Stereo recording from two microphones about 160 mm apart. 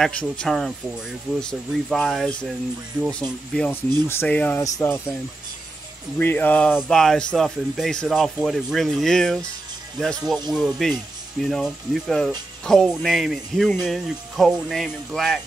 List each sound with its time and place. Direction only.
0.0 s speech: 5° left (ahead or behind)
6.1 s speech: 10° left (ahead or behind)
10.5 s speech: centre (ahead or behind)